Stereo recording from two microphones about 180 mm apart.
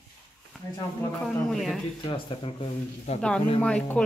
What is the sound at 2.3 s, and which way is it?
Speech, 35° left (ahead or behind).